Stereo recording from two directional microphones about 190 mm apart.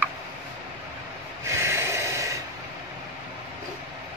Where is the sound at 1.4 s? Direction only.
15° right (ahead or behind).